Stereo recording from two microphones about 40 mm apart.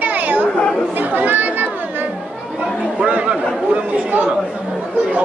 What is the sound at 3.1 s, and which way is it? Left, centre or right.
Speech, right.